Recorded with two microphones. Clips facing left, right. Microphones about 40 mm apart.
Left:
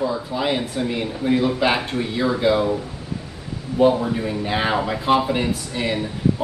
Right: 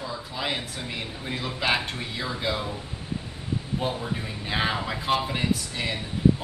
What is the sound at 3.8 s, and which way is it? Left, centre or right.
A man's voice, centre.